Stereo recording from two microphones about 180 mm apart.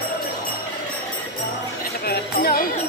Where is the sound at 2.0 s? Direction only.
60° left (ahead or behind).